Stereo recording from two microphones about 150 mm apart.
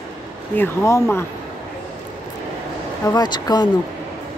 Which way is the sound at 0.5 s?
20° left (ahead or behind).